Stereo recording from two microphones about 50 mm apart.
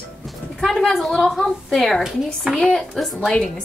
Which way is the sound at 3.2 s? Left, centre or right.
Centre.